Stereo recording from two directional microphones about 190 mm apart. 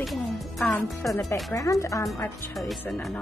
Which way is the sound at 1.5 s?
15° left (ahead or behind).